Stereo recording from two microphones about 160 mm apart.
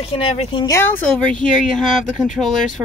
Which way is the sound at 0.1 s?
35° left (ahead or behind).